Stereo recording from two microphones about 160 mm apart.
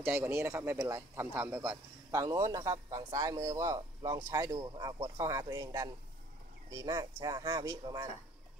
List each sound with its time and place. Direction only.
0.0 s speech: 15° right (ahead or behind)